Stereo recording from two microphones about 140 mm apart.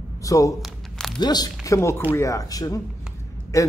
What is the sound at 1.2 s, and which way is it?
Speech, 30° left (ahead or behind).